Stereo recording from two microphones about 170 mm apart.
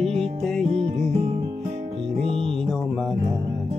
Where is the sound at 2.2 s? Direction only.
35° right (ahead or behind).